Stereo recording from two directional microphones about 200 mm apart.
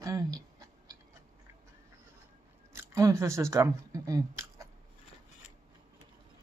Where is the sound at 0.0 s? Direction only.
15° right (ahead or behind).